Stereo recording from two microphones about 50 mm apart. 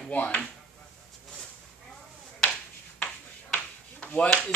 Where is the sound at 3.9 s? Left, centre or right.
Left.